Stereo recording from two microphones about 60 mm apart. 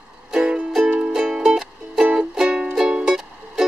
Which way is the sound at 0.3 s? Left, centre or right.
Centre.